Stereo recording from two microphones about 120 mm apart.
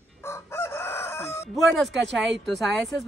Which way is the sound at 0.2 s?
20° left (ahead or behind).